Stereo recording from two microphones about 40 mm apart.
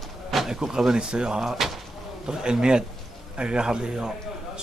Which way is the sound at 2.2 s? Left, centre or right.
Centre.